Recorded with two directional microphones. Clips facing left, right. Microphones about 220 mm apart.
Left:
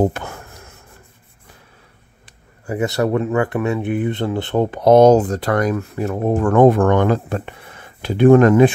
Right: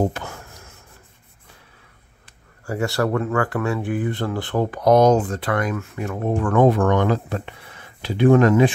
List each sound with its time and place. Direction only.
0.0 s a sound: 60° left (ahead or behind)
2.6 s speech: 20° left (ahead or behind)
5.1 s speech: 40° left (ahead or behind)